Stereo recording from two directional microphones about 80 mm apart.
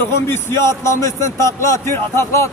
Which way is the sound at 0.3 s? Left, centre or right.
Left.